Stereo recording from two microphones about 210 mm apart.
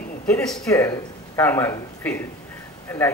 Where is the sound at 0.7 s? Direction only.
15° left (ahead or behind).